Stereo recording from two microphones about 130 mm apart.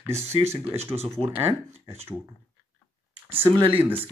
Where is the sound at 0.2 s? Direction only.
55° right (ahead or behind).